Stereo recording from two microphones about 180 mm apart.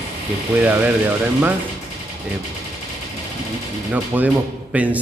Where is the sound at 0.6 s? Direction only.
10° right (ahead or behind).